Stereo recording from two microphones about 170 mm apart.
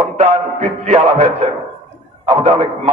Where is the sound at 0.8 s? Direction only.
40° right (ahead or behind).